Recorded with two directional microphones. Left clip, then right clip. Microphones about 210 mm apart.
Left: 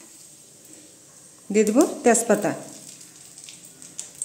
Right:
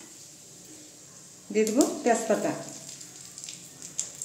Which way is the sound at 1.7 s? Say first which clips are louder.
Left 6 dB; 55° left (ahead or behind).